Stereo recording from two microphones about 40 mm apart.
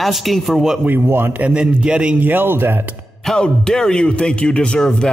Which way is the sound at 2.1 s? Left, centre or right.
Right.